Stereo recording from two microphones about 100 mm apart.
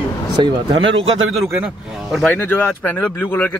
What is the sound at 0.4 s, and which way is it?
Speech, 60° right (ahead or behind).